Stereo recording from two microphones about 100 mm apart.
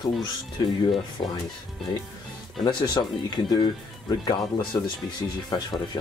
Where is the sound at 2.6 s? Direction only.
45° left (ahead or behind).